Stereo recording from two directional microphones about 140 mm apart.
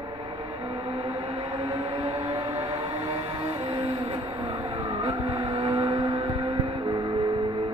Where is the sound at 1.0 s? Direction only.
30° right (ahead or behind).